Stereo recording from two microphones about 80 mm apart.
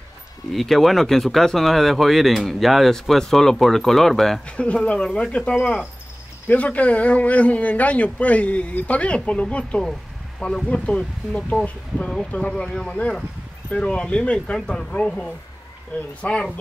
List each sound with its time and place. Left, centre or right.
0.5 s speech: centre